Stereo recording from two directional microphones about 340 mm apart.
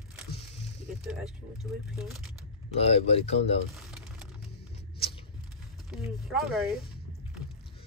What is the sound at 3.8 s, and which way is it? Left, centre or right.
Crumpling, centre.